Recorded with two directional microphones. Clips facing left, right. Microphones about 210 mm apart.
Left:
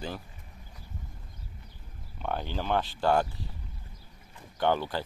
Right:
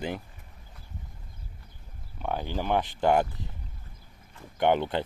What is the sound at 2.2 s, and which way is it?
Speech, 10° right (ahead or behind).